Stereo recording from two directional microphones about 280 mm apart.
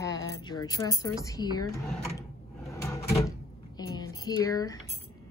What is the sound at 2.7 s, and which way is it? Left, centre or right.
Drawer open or close, centre.